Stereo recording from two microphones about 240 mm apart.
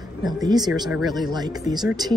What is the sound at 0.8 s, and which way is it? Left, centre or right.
Speech, centre.